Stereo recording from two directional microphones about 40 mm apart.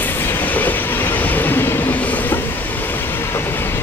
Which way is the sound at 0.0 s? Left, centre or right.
Left.